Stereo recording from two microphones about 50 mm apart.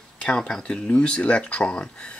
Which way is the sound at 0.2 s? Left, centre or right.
Centre.